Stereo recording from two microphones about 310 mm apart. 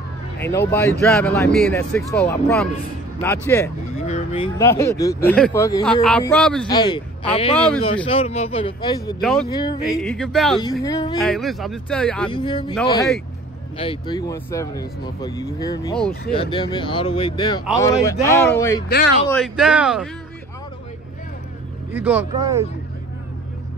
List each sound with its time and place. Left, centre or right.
0.4 s speech: centre
4.0 s a man's voice: centre
9.2 s speech: centre
9.5 s speech: centre
9.8 s speech: centre
11.1 s speech: centre
12.3 s speech: centre
21.9 s speech: centre